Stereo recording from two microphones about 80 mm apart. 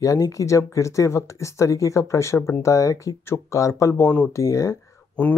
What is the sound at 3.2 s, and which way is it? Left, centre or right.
Speech, left.